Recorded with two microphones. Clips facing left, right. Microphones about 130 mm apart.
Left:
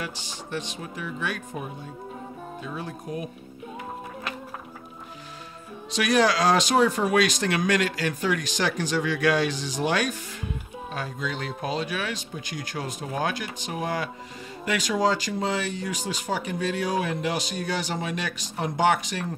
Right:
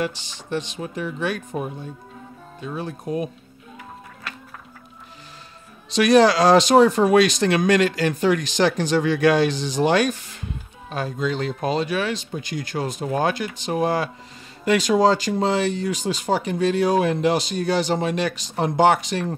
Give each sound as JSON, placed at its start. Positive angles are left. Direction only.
{"t": 0.0, "sound": "speech", "side_deg": -25}
{"t": 5.9, "sound": "speech", "side_deg": -30}
{"t": 11.2, "sound": "speech", "side_deg": -30}